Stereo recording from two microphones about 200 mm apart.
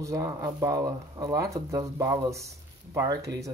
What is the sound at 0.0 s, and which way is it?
Speech, 15° right (ahead or behind).